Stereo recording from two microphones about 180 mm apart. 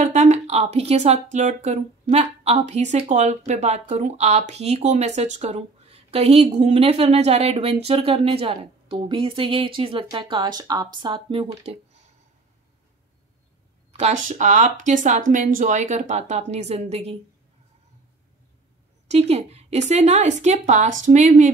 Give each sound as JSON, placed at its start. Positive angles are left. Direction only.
{"t": 0.0, "sound": "speech", "side_deg": -40}
{"t": 13.9, "sound": "speech", "side_deg": -40}
{"t": 19.0, "sound": "speech", "side_deg": -35}